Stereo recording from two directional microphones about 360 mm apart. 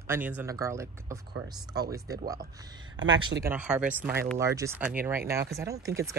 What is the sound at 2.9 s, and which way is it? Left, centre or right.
Speech, right.